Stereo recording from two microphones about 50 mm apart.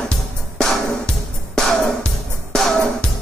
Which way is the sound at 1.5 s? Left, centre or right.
Centre.